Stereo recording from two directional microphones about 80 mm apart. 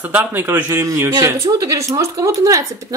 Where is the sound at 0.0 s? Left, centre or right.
Right.